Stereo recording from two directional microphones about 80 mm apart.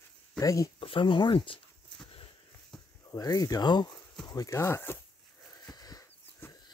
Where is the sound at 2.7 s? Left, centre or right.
Centre.